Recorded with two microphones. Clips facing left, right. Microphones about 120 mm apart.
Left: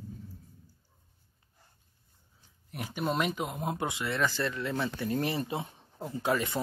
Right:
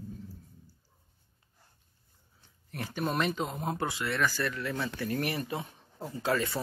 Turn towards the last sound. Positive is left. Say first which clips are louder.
# even
turn(degrees=20)  # may be behind; listen again after turning